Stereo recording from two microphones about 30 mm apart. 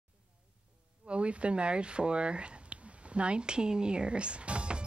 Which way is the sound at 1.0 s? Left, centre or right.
Right.